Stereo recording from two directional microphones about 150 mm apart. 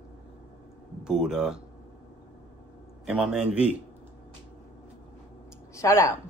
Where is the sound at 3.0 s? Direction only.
5° right (ahead or behind).